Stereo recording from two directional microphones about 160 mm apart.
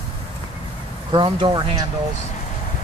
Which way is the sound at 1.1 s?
30° right (ahead or behind).